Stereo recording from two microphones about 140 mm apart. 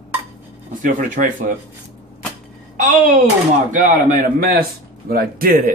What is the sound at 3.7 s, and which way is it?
A man's voice, 65° right (ahead or behind).